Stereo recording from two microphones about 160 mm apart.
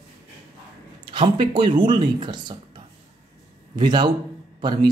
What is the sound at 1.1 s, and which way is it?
Speech, 30° right (ahead or behind).